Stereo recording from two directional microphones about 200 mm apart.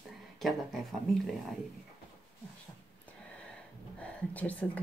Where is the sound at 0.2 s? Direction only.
Centre (ahead or behind).